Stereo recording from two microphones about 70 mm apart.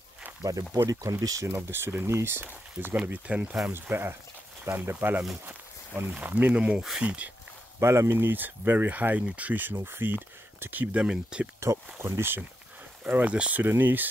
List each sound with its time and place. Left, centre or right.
0.4 s speech: right
1.5 s speech: right
3.1 s speech: right
3.9 s speech: right
5.4 s walk: right
6.1 s speech: right
7.8 s speech: right; by 11.4 s centre
11.6 s speech: right
13.0 s speech: right